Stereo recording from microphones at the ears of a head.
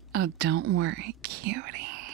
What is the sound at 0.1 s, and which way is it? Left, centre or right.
Whispering, right.